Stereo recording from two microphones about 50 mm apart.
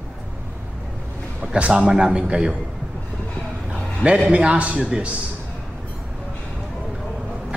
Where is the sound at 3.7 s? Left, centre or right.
Right.